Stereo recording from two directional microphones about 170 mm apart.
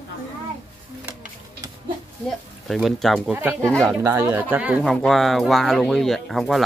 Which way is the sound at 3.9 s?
15° right (ahead or behind).